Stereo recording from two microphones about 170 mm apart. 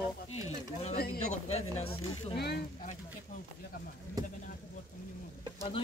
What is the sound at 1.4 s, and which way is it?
Speech, 40° left (ahead or behind).